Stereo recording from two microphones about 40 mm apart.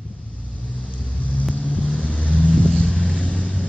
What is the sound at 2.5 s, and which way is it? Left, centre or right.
Vehicle, centre.